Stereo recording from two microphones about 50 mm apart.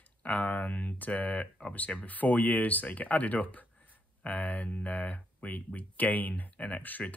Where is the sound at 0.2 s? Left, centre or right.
Left.